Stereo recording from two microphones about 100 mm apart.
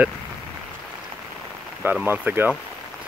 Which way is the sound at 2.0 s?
20° right (ahead or behind).